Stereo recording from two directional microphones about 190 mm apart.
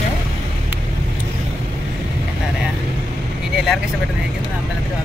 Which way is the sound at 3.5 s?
Centre (ahead or behind).